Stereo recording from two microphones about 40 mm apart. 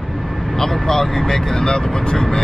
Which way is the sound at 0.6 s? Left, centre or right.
Centre.